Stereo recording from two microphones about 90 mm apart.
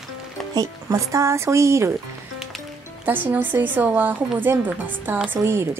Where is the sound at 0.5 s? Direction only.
35° right (ahead or behind).